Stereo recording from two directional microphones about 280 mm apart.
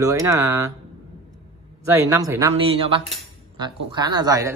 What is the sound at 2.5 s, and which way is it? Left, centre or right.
A man's voice, right.